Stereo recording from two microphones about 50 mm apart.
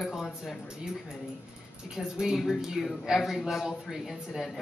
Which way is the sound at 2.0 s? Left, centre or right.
Centre.